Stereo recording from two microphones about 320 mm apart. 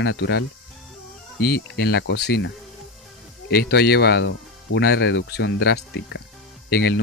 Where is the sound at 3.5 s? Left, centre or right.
Left.